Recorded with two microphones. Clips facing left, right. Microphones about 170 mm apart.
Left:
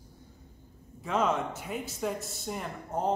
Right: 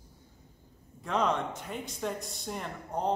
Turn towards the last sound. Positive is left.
turn(degrees=5)  # may be behind; listen again after turning